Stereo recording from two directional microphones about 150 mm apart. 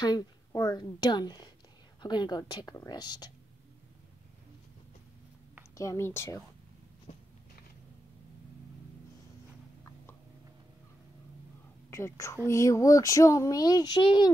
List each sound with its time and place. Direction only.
0.0 s speech: 25° left (ahead or behind)
5.8 s speech: 20° left (ahead or behind)
11.9 s speech: 20° left (ahead or behind)